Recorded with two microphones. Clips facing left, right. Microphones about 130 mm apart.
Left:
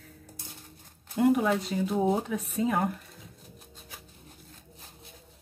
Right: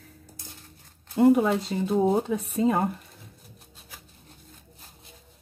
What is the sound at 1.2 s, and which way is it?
Speech, 25° right (ahead or behind).